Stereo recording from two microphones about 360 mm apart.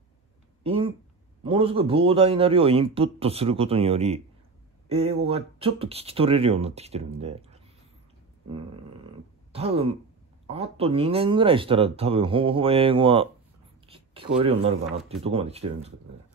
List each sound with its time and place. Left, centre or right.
1.4 s speech: centre
9.5 s speech: centre
13.8 s a sound: centre
14.4 s speech: centre